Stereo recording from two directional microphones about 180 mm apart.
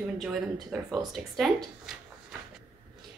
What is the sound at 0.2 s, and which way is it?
A woman's voice, centre (ahead or behind).